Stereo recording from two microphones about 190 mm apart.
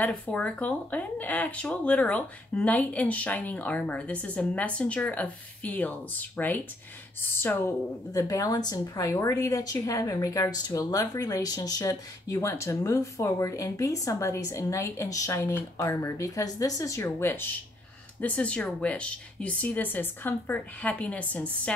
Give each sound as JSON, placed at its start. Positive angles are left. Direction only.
{"t": 0.0, "sound": "speech", "side_deg": 5}